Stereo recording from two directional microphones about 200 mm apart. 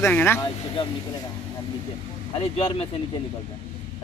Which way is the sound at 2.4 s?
25° left (ahead or behind).